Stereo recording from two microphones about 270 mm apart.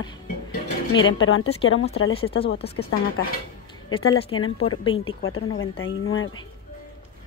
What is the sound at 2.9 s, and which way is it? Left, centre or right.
Speech, left.